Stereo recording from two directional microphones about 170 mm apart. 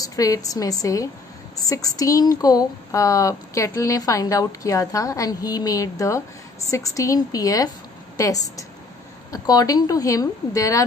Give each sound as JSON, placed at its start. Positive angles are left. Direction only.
{"t": 0.0, "sound": "speech", "side_deg": 20}